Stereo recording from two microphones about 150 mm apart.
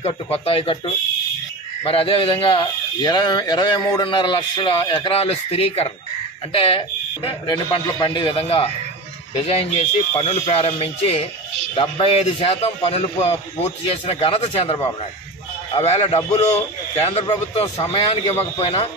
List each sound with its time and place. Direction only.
0.0 s speech: 40° left (ahead or behind)